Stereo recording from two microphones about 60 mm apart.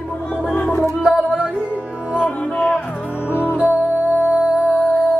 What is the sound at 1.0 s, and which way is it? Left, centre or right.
Music, centre.